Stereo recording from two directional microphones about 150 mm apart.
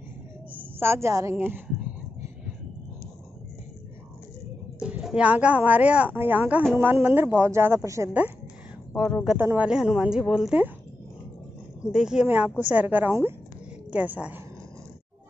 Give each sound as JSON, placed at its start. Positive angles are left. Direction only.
{"t": 0.7, "sound": "speech", "side_deg": -15}
{"t": 4.7, "sound": "a woman's voice", "side_deg": -5}
{"t": 8.9, "sound": "speech", "side_deg": -5}
{"t": 11.9, "sound": "speech", "side_deg": -5}